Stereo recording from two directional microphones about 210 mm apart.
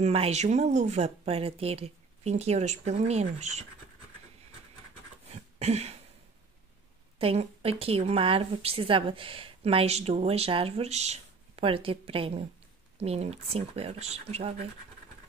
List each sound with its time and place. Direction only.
0.0 s speech: 30° right (ahead or behind)
5.3 s a sound: 30° right (ahead or behind)
7.2 s a woman's voice: 25° right (ahead or behind)